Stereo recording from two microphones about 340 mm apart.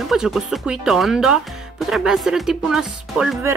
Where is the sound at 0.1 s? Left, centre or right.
Centre.